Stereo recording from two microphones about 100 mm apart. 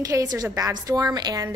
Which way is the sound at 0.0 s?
35° right (ahead or behind).